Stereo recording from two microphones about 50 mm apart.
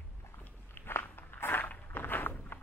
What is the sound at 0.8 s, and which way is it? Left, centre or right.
Walk, left.